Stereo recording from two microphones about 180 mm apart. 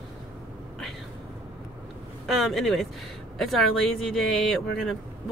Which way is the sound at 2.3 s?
Centre (ahead or behind).